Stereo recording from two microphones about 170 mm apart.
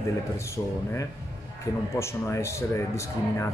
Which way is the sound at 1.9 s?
15° left (ahead or behind).